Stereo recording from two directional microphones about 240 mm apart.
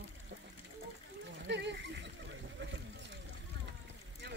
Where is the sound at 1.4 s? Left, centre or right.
Right.